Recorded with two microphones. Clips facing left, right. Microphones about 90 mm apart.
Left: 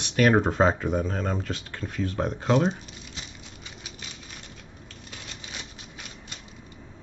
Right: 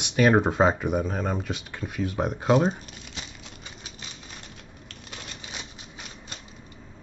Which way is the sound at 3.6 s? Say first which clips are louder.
Even; 35° right (ahead or behind).